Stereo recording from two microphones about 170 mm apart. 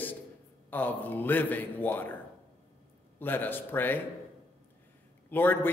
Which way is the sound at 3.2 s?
10° left (ahead or behind).